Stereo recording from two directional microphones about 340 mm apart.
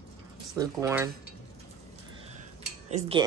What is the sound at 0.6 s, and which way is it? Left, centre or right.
Speech, centre.